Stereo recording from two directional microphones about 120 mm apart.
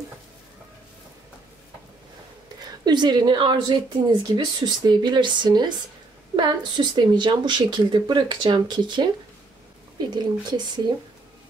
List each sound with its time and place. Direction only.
2.6 s a woman's voice: 35° right (ahead or behind)